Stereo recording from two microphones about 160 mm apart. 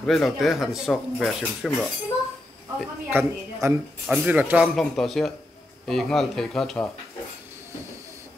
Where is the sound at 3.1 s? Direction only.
15° right (ahead or behind).